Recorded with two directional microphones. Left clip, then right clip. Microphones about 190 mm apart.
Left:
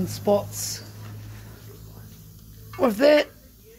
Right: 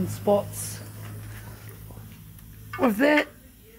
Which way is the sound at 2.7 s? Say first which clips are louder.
Left 3 dB; 5° left (ahead or behind).